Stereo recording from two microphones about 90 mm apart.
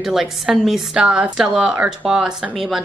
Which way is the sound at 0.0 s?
5° right (ahead or behind).